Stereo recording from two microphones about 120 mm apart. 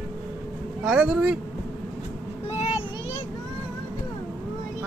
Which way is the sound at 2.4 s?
65° left (ahead or behind).